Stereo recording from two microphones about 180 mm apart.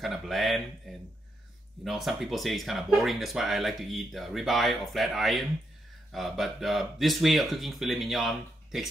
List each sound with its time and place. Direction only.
0.0 s speech: centre (ahead or behind)